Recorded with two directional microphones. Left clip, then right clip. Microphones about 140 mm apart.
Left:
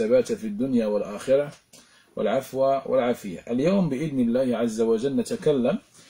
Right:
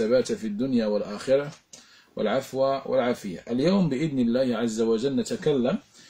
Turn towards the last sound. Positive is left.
turn(degrees=-25)  # may be behind; listen again after turning